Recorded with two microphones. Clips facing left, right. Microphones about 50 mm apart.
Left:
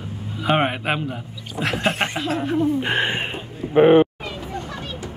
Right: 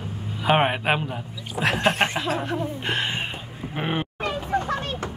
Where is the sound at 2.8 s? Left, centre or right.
Left.